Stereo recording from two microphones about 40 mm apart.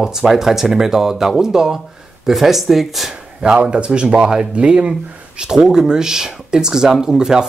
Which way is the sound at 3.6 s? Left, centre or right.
Right.